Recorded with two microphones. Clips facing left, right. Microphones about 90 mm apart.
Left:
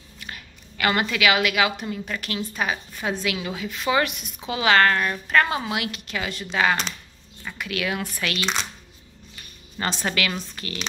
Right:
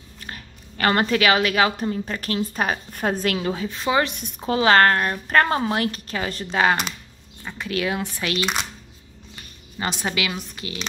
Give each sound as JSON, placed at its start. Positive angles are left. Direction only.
{"t": 0.2, "sound": "a woman's voice", "side_deg": -35}
{"t": 9.8, "sound": "speech", "side_deg": -15}